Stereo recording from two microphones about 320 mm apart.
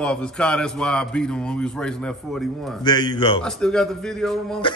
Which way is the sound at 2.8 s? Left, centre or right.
Centre.